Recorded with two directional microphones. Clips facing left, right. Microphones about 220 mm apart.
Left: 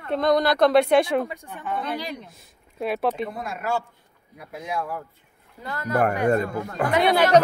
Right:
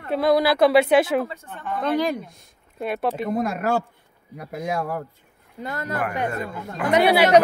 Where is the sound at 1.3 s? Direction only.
15° left (ahead or behind).